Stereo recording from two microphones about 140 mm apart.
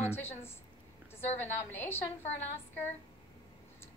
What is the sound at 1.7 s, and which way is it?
Speech, 15° left (ahead or behind).